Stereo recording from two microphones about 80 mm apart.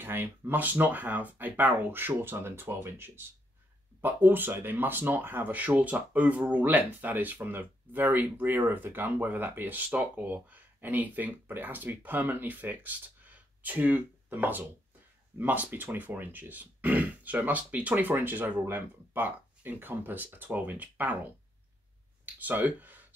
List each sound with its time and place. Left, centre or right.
0.0 s speech: right